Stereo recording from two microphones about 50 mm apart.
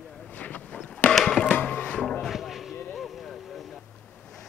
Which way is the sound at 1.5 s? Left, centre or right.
Left.